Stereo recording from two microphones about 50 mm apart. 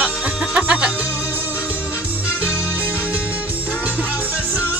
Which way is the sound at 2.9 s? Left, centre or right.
Right.